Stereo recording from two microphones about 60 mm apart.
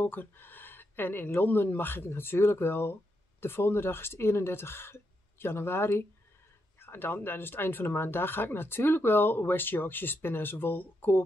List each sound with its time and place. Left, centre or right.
0.0 s speech: left